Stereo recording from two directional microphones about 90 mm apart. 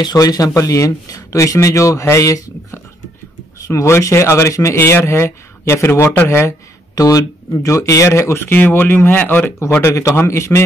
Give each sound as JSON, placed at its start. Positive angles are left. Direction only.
{"t": 0.0, "sound": "speech", "side_deg": 45}
{"t": 7.0, "sound": "speech", "side_deg": 40}